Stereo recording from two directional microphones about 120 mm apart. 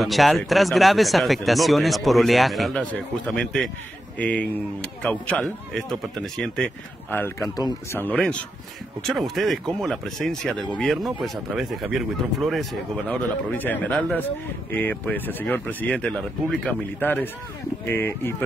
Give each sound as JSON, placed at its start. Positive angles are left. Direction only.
{"t": 0.0, "sound": "speech", "side_deg": 0}
{"t": 5.4, "sound": "speech", "side_deg": 0}
{"t": 7.1, "sound": "speech", "side_deg": 20}
{"t": 13.5, "sound": "speech", "side_deg": 15}